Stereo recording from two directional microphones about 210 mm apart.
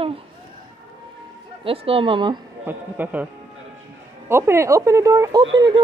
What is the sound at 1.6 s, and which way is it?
Speech, 25° right (ahead or behind).